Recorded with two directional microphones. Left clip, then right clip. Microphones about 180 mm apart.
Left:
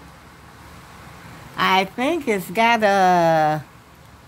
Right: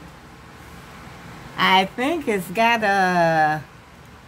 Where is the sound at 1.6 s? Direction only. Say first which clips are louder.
Right 1 dB; 40° left (ahead or behind).